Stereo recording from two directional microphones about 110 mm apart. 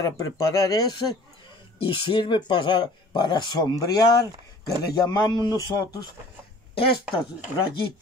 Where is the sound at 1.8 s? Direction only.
50° left (ahead or behind).